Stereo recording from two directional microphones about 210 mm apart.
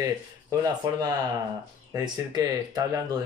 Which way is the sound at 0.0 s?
15° right (ahead or behind).